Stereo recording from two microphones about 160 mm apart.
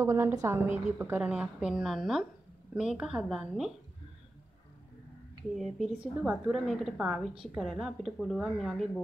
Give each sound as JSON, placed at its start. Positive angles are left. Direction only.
{"t": 0.0, "sound": "a woman's voice", "side_deg": -15}
{"t": 5.5, "sound": "a woman's voice", "side_deg": 0}